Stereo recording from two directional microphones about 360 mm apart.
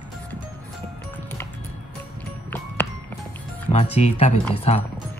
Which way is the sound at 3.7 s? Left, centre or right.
Centre.